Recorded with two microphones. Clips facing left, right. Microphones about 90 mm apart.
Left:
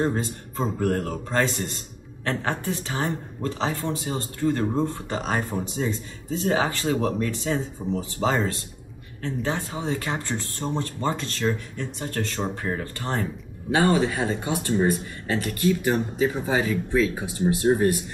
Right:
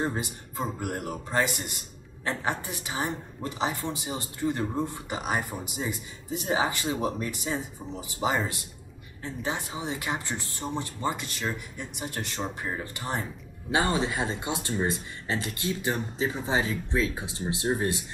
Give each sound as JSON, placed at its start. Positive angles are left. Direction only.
{"t": 0.0, "sound": "speech", "side_deg": -15}